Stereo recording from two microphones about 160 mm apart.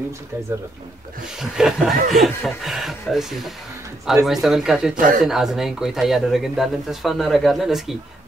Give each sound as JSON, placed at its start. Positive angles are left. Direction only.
{"t": 1.4, "sound": "speech", "side_deg": 0}
{"t": 4.9, "sound": "speech", "side_deg": -60}
{"t": 5.2, "sound": "speech", "side_deg": 0}